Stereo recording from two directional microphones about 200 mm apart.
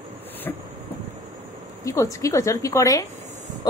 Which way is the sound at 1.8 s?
15° left (ahead or behind).